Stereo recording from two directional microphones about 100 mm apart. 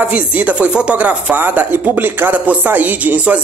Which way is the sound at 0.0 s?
15° right (ahead or behind).